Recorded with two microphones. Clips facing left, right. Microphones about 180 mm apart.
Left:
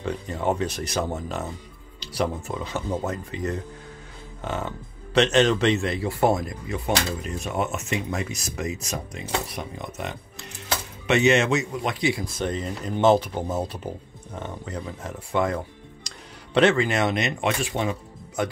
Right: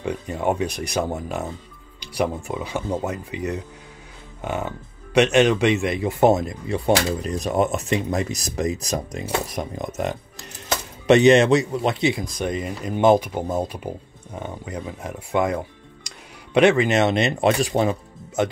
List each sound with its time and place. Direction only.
0.0 s speech: 15° right (ahead or behind)
7.2 s speech: 35° right (ahead or behind)
18.4 s speech: 25° right (ahead or behind)